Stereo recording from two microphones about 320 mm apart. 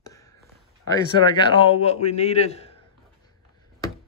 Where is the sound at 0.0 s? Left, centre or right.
Centre.